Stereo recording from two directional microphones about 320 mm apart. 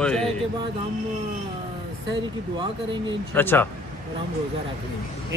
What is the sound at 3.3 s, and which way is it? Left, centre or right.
Speech, centre.